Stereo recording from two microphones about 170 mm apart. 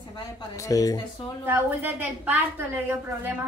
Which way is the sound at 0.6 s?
20° left (ahead or behind).